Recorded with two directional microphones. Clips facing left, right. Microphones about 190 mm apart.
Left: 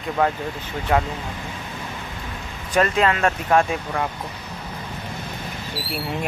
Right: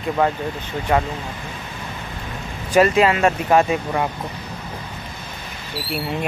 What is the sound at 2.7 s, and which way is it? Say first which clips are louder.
Speech: right 4 dB; 10° right (ahead or behind).